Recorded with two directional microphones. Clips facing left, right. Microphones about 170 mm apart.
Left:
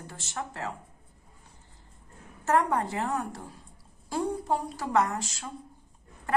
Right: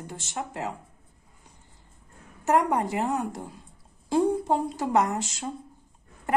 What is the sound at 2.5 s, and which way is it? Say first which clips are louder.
A woman's voice: right 2 dB; 15° right (ahead or behind).